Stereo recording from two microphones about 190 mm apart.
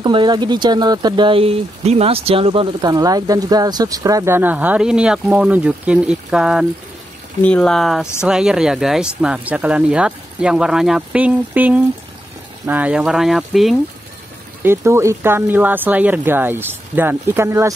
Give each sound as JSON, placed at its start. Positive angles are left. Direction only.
{"t": 0.0, "sound": "speech", "side_deg": -25}
{"t": 14.6, "sound": "speech", "side_deg": -15}